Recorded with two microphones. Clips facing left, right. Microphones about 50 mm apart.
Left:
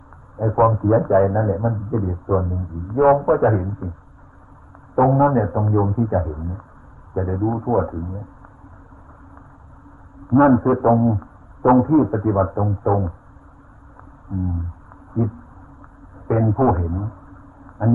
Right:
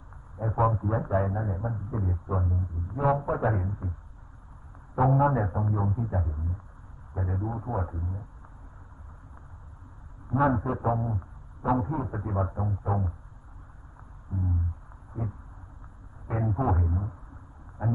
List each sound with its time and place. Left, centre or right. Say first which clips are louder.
0.6 s a man's voice: left 11 dB; left
4.9 s a man's voice: left 8 dB; left
7.2 s a man's voice: left 12 dB; left
10.3 s a sound: left 12 dB; left
11.8 s a man's voice: left 16 dB; left
14.3 s a sound: left 9 dB; left
15.2 s a man's voice: left 11 dB; left